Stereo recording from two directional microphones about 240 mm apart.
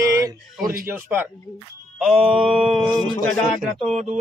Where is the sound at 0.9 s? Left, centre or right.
Centre.